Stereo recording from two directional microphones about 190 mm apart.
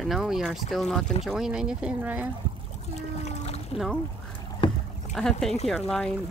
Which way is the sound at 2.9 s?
35° left (ahead or behind).